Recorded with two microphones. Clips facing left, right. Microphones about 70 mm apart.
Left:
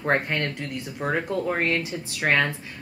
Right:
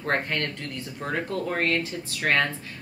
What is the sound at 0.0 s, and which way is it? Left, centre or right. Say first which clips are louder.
Speech: left 3 dB; centre.